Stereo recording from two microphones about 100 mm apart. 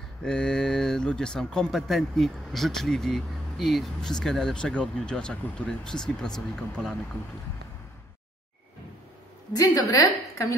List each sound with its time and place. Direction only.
0.2 s speech: 10° left (ahead or behind)
9.5 s a woman's voice: 40° left (ahead or behind)